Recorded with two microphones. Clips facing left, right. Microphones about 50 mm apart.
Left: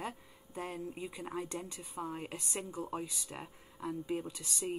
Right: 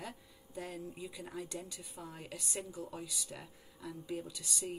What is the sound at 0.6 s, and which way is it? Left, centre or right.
Speech, left.